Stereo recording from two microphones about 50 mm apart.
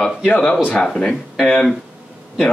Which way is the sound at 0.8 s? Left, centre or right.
Centre.